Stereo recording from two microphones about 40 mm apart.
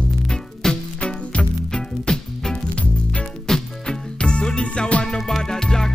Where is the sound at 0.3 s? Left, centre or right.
Centre.